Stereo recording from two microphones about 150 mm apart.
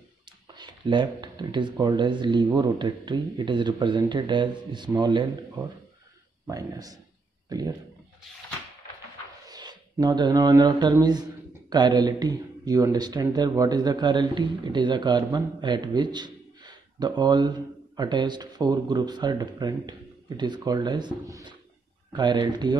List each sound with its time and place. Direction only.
0.6 s speech: 30° right (ahead or behind)
9.5 s speech: 25° right (ahead or behind)